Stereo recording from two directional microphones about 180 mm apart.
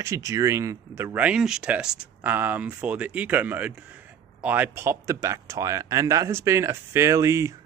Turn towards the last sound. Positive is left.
turn(degrees=-15)  # may be behind; listen again after turning